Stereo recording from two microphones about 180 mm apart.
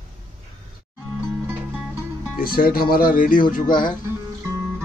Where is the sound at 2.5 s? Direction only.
55° left (ahead or behind).